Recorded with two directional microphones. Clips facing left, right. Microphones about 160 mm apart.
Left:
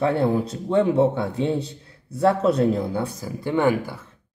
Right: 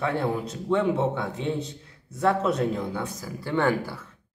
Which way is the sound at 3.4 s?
15° left (ahead or behind).